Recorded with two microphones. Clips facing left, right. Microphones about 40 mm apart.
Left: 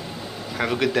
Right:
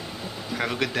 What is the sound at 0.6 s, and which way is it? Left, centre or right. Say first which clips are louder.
Speech: left 4 dB; centre.